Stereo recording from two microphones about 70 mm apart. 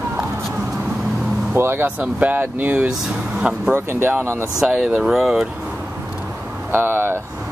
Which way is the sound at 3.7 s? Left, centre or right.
Right.